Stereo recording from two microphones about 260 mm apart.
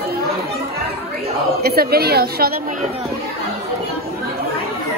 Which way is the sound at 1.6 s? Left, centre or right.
Right.